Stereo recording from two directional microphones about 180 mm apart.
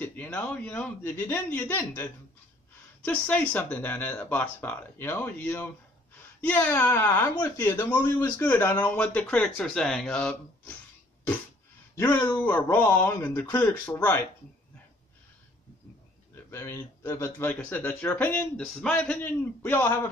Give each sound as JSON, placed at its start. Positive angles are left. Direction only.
{"t": 0.0, "sound": "speech", "side_deg": 10}
{"t": 3.1, "sound": "speech", "side_deg": 10}
{"t": 11.9, "sound": "speech", "side_deg": 10}
{"t": 16.4, "sound": "speech", "side_deg": 15}